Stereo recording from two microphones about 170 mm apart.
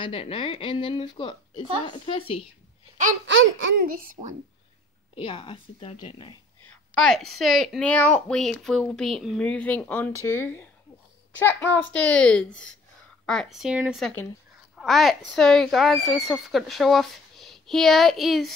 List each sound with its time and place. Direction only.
0.0 s speech: 35° left (ahead or behind)
3.3 s speech: 80° right; by 4.4 s 50° right (ahead or behind)
5.1 s speech: 30° left (ahead or behind)
6.7 s a woman's voice: 5° left (ahead or behind)